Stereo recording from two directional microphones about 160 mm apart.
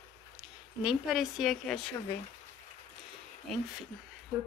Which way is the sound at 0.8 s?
5° right (ahead or behind).